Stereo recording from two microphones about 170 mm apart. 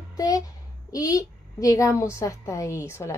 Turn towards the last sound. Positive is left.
turn(degrees=15)  # may be behind; listen again after turning